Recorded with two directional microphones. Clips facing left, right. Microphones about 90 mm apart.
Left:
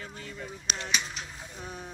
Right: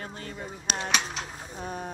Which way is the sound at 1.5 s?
50° right (ahead or behind).